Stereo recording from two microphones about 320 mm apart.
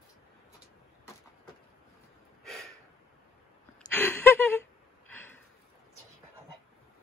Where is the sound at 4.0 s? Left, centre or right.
Centre.